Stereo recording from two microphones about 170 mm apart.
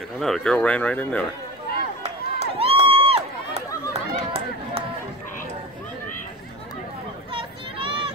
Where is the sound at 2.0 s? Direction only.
35° right (ahead or behind).